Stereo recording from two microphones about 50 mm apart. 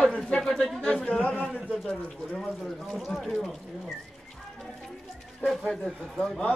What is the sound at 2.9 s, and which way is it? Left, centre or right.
Speech, centre.